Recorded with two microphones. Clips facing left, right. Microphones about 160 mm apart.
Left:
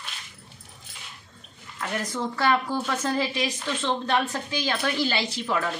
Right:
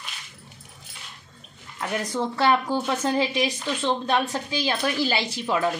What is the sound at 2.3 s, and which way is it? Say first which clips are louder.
A woman's voice: right 2 dB; 25° right (ahead or behind).